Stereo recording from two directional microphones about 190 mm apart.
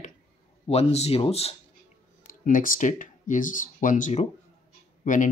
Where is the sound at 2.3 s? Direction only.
45° left (ahead or behind).